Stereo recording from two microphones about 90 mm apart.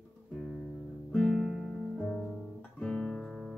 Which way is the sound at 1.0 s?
5° left (ahead or behind).